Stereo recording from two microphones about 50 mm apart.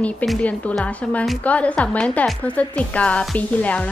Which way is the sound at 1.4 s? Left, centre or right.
Left.